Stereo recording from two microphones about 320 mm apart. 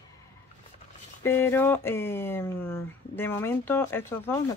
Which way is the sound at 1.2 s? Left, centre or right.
Centre.